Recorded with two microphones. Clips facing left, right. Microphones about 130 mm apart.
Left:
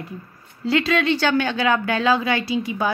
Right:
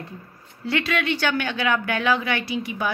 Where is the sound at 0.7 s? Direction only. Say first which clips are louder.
Left 5 dB; 25° left (ahead or behind).